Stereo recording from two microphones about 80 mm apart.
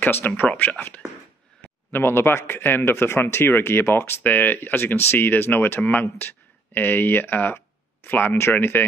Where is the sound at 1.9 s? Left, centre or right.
Left.